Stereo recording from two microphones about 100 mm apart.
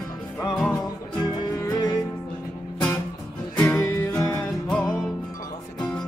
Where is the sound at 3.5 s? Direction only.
15° left (ahead or behind).